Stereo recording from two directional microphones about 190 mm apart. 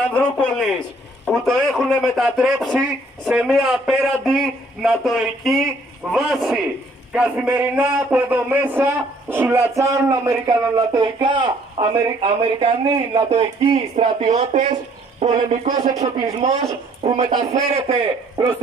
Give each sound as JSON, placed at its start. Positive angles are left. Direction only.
{"t": 0.1, "sound": "a man's voice", "side_deg": 5}
{"t": 15.8, "sound": "a man's voice", "side_deg": -20}